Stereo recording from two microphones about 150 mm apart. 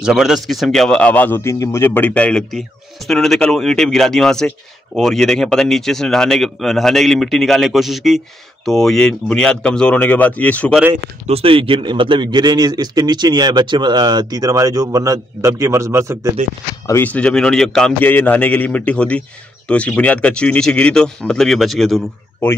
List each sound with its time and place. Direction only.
0.0 s speech: 5° right (ahead or behind)
11.2 s a man's voice: 40° right (ahead or behind); by 16.3 s 20° right (ahead or behind)
16.8 s speech: 15° left (ahead or behind)